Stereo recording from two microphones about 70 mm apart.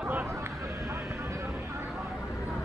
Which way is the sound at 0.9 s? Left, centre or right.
Right.